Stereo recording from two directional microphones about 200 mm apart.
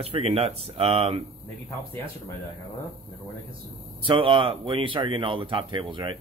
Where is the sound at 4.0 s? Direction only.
25° right (ahead or behind).